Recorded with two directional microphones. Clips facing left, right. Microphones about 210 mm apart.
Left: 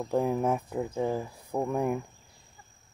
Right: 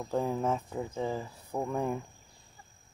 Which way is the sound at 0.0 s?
10° left (ahead or behind).